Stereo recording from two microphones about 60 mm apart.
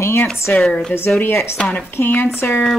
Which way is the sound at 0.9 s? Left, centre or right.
Left.